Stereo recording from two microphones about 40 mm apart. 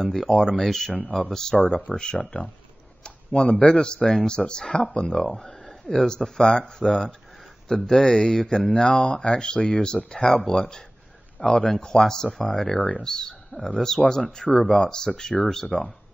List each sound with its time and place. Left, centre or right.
0.0 s speech: centre
1.9 s speech: left
5.3 s speech: centre; by 11.6 s left
11.6 s speech: centre